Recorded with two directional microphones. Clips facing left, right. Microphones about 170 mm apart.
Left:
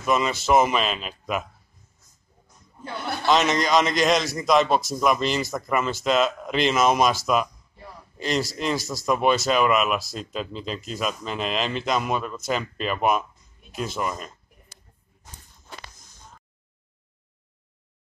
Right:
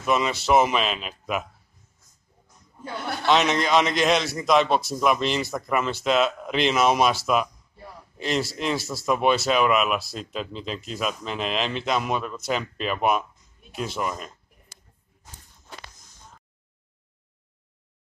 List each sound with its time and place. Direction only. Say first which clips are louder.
0.0 s a man's voice: even; centre (ahead or behind)
3.3 s a man's voice: even; centre (ahead or behind)
8.2 s a man's voice: even; centre (ahead or behind)